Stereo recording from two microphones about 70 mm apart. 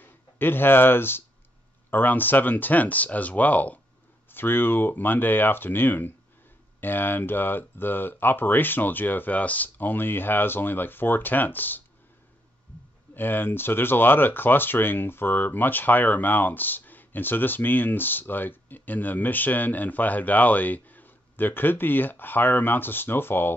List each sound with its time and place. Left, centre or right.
0.0 s speech: left
13.1 s speech: left